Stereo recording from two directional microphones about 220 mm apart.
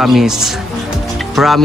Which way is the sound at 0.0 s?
Centre (ahead or behind).